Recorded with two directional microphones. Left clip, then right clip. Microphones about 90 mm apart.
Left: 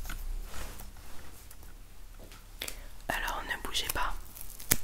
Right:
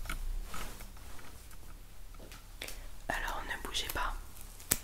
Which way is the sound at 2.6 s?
25° left (ahead or behind).